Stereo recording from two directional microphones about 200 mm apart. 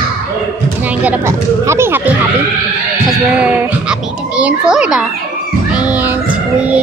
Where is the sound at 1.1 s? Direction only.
15° right (ahead or behind).